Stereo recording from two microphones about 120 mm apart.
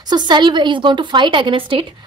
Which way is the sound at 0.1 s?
35° right (ahead or behind).